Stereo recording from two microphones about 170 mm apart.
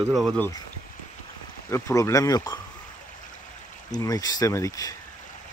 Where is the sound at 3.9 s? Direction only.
20° left (ahead or behind).